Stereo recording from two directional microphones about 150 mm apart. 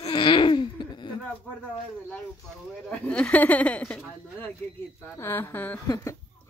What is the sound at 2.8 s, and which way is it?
Speech, 10° left (ahead or behind).